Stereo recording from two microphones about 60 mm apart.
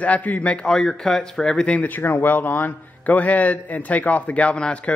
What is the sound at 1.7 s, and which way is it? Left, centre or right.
A man's voice, left.